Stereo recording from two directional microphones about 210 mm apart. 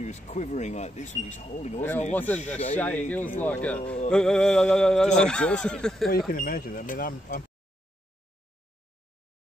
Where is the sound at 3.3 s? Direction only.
5° left (ahead or behind).